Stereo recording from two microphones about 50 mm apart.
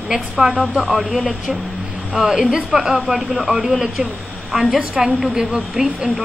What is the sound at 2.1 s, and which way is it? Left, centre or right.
A woman's voice, centre.